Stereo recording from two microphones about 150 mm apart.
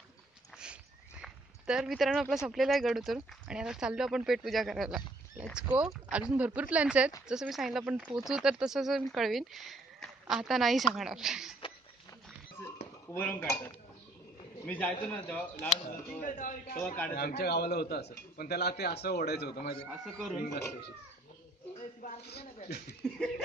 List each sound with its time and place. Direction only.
1.2 s speech: 5° right (ahead or behind)
12.6 s a sound: 20° left (ahead or behind)
13.1 s speech: 10° left (ahead or behind)
14.7 s speech: 10° left (ahead or behind)
15.9 s speech: 60° left (ahead or behind)
16.7 s speech: 10° left (ahead or behind)
17.1 s a man's voice: 90° left
20.1 s speech: 5° left (ahead or behind)
22.7 s a man's voice: 90° left
23.1 s speech: 5° left (ahead or behind)